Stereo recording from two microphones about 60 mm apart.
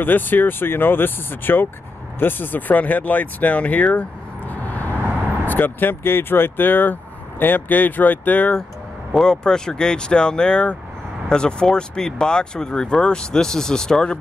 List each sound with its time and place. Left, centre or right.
0.0 s speech: left
9.1 s speech: centre